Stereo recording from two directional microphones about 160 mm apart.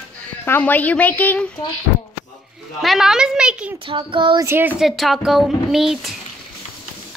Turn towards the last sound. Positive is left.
turn(degrees=0)  # may be behind; listen again after turning